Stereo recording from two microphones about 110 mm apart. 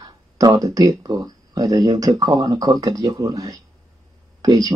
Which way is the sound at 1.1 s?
35° right (ahead or behind).